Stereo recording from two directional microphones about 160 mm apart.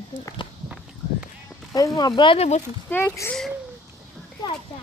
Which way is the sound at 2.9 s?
15° left (ahead or behind).